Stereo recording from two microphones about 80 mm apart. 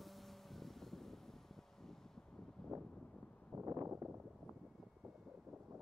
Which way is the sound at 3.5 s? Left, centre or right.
Right.